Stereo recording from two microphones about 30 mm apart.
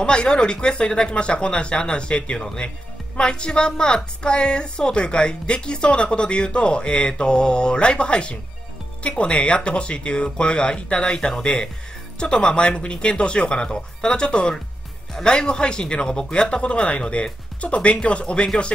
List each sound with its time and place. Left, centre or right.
0.0 s a woman's voice: left